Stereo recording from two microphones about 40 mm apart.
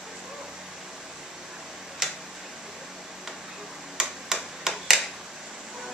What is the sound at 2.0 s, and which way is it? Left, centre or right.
Tick-tock, centre.